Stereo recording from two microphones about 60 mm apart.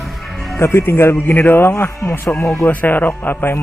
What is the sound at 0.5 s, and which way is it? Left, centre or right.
Speech, left.